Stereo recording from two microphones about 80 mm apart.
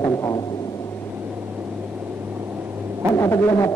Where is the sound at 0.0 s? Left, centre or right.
Left.